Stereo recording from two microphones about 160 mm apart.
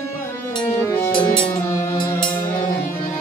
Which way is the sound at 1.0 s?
5° left (ahead or behind).